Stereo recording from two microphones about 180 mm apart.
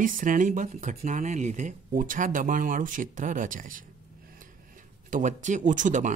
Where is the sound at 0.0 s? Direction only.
45° right (ahead or behind).